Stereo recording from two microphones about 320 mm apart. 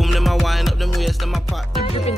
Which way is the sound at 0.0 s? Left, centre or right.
Centre.